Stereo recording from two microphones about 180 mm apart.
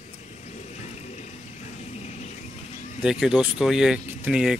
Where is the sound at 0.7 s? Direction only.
35° left (ahead or behind).